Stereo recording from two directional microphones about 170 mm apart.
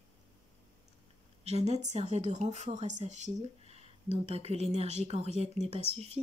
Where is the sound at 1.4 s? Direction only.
40° right (ahead or behind).